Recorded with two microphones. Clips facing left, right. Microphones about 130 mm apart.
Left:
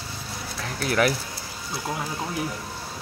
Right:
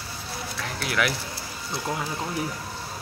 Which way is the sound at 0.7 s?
40° left (ahead or behind).